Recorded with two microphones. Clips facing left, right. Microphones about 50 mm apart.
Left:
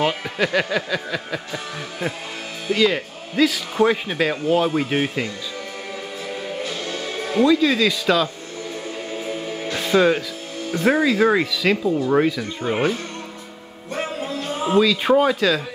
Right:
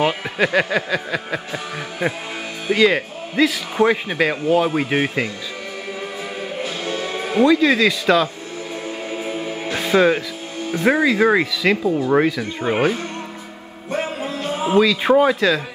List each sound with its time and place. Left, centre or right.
0.0 s speech: centre
6.6 s music: centre
9.2 s music: centre
10.7 s speech: centre
13.9 s music: centre
15.2 s speech: centre